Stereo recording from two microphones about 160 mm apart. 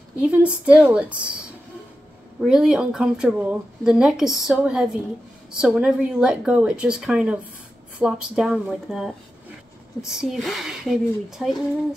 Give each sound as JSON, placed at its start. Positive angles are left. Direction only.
{"t": 0.2, "sound": "a woman's voice", "side_deg": -5}
{"t": 2.4, "sound": "speech", "side_deg": 0}